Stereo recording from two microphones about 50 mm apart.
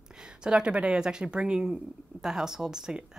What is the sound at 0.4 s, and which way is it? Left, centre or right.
A woman's voice, centre.